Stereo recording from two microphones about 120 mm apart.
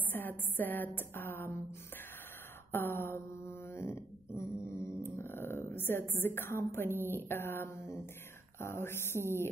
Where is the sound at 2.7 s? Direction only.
20° left (ahead or behind).